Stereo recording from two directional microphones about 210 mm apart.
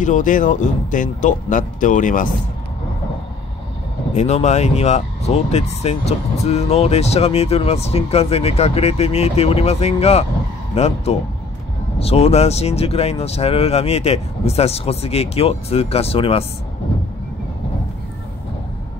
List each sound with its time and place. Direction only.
0.0 s speech: 35° left (ahead or behind)
4.1 s speech: 35° left (ahead or behind)